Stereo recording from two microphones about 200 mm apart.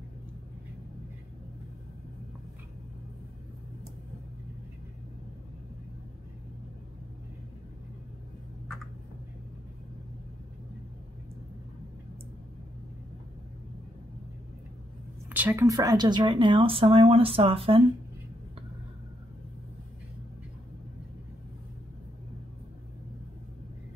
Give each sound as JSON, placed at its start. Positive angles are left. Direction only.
{"t": 15.2, "sound": "speech", "side_deg": -10}